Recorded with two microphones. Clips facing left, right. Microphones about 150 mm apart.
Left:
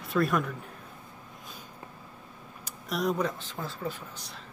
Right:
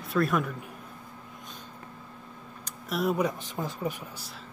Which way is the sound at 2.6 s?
5° right (ahead or behind).